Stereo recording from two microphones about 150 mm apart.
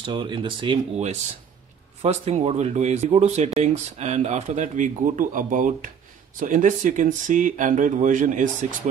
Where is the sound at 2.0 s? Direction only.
45° right (ahead or behind).